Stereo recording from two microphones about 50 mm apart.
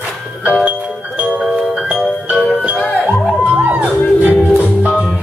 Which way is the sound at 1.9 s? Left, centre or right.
Right.